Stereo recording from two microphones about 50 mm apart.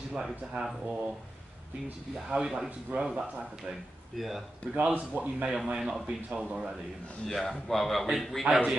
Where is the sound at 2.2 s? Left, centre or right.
Centre.